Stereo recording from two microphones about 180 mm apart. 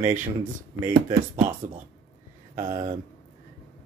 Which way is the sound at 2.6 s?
35° right (ahead or behind).